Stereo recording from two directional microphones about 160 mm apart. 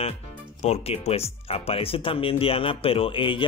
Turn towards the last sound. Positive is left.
turn(degrees=35)  # may be behind; listen again after turning